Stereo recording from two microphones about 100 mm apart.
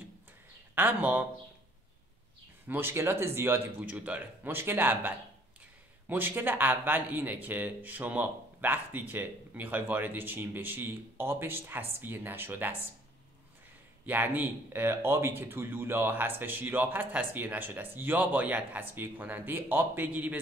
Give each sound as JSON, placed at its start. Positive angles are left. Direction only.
{"t": 0.7, "sound": "a man's voice", "side_deg": -20}
{"t": 2.7, "sound": "speech", "side_deg": -20}
{"t": 14.0, "sound": "speech", "side_deg": -20}